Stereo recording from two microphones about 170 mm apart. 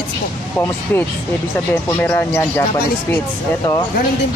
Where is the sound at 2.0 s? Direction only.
10° left (ahead or behind).